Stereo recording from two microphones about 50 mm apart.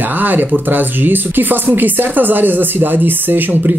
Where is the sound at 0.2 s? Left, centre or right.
Right.